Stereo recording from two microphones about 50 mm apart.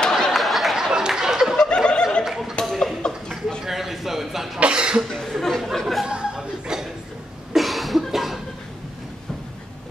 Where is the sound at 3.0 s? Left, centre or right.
Centre.